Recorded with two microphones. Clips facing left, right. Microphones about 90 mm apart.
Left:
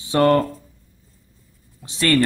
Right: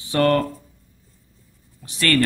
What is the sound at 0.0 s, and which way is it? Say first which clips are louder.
Speech: left 2 dB; 20° left (ahead or behind).